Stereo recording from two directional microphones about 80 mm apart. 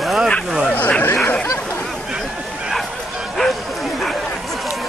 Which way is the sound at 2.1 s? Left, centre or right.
Centre.